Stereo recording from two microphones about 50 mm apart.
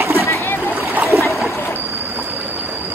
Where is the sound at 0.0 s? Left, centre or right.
Right.